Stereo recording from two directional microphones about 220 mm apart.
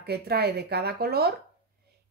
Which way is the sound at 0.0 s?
45° right (ahead or behind).